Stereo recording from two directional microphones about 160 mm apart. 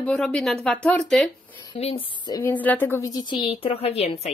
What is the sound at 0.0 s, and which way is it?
Speech, 5° left (ahead or behind).